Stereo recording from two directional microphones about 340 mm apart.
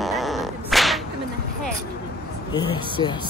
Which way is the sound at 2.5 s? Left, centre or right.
Centre.